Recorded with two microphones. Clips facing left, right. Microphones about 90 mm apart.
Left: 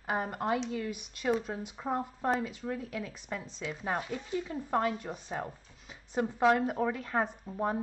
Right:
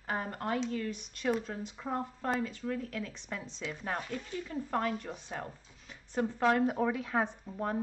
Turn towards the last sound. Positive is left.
turn(degrees=5)  # may be behind; listen again after turning